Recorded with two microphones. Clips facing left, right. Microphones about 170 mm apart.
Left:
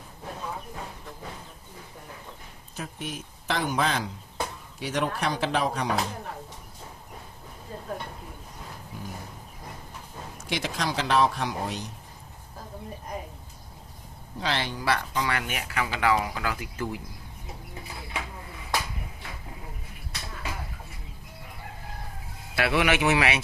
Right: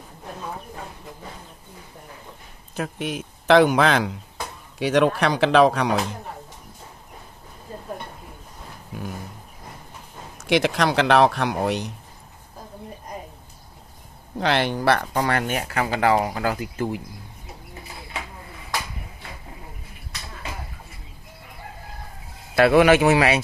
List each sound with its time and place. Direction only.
2.7 s speech: 75° right (ahead or behind)
4.7 s a man's voice: 90° right
10.4 s speech: 75° right (ahead or behind)
14.4 s speech: 65° right (ahead or behind); by 17.0 s 25° right (ahead or behind)
22.6 s speech: 45° right (ahead or behind)